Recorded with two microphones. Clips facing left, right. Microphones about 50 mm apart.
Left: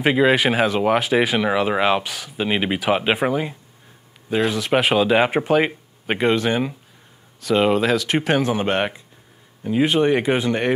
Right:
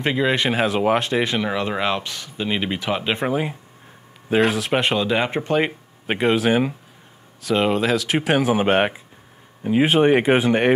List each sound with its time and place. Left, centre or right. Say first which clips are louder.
0.0 s speech: left 4 dB; centre
0.7 s speech: left 1 dB; centre
4.6 s speech: left 3 dB; centre
5.6 s speech: left 1 dB; centre